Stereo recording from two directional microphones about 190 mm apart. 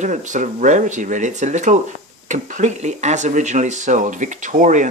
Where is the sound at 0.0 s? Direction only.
40° right (ahead or behind).